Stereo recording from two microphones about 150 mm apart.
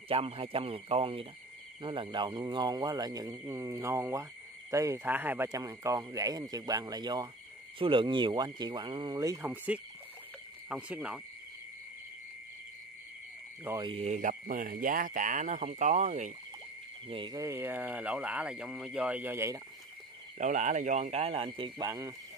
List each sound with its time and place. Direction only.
0.1 s speech: 40° right (ahead or behind)
9.2 s a man's voice: 20° right (ahead or behind)
13.7 s speech: 30° right (ahead or behind)
14.0 s speech: 55° right (ahead or behind)
17.1 s a man's voice: 30° right (ahead or behind)
20.3 s speech: 55° right (ahead or behind)
21.5 s speech: 30° right (ahead or behind)